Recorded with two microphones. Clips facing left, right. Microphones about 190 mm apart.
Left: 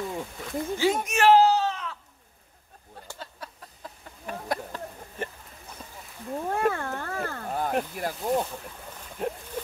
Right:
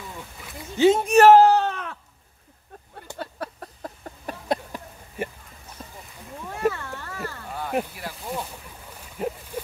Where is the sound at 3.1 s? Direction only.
60° right (ahead or behind).